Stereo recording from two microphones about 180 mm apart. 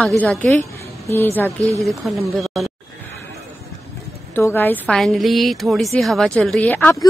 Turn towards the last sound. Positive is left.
turn(degrees=10)  # may be behind; listen again after turning